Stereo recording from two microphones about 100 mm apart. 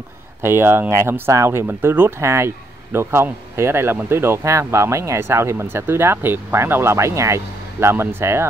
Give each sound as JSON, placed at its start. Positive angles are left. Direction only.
{"t": 0.4, "sound": "speech", "side_deg": -25}